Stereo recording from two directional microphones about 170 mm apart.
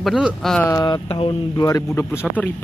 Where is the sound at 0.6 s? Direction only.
20° left (ahead or behind).